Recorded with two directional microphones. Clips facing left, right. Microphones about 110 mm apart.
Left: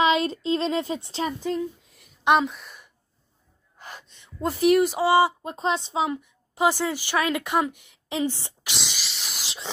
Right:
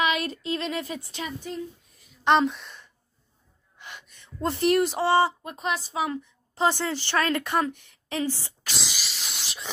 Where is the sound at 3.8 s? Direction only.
40° left (ahead or behind).